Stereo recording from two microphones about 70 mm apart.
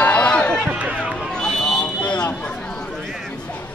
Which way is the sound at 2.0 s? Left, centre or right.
Centre.